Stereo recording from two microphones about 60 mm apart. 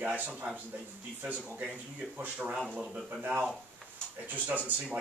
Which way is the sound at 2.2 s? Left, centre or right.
Right.